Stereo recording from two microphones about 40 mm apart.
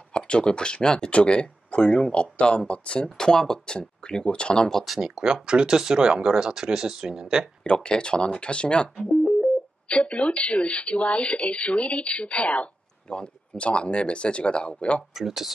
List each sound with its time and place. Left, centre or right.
0.1 s speech: left
3.2 s speech: centre
4.8 s speech: centre
7.6 s speech: left
15.1 s speech: centre